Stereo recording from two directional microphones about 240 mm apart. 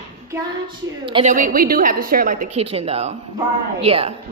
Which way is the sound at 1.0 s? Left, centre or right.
Right.